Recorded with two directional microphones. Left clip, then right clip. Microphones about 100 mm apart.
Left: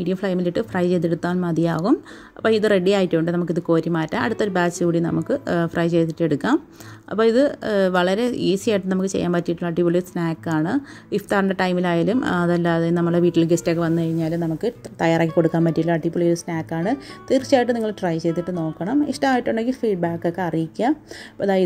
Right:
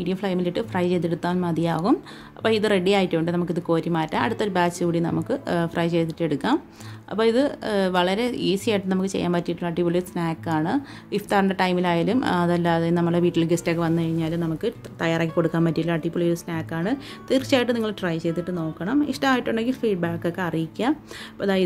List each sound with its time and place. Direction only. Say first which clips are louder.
0.0 s a woman's voice: left 3 dB; 40° left (ahead or behind)
15.0 s a woman's voice: left 5 dB; 45° left (ahead or behind); by 17.4 s 30° left (ahead or behind)
17.4 s a woman's voice: left 3 dB; 20° left (ahead or behind)
18.0 s a woman's voice: left 3 dB; 35° left (ahead or behind)